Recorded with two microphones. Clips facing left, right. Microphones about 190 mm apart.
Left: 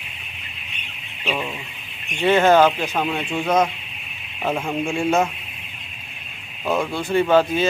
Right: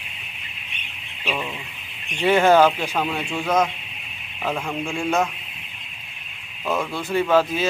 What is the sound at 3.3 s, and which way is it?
Speech, 20° left (ahead or behind).